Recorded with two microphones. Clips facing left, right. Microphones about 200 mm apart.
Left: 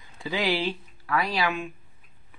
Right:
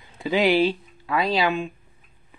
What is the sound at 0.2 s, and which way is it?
Speech, 20° right (ahead or behind).